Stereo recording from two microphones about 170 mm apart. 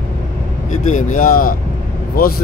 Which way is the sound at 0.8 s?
50° left (ahead or behind).